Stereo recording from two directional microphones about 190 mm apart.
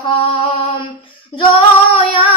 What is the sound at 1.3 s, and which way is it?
Female singing, 25° left (ahead or behind).